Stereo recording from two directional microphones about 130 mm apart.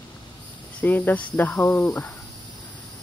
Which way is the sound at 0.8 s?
15° left (ahead or behind).